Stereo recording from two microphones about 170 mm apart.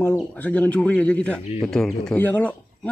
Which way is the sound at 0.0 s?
10° left (ahead or behind).